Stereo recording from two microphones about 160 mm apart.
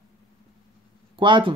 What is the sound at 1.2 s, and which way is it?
Speech, 30° right (ahead or behind).